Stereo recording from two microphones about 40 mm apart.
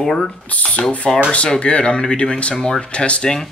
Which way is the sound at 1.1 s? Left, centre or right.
Centre.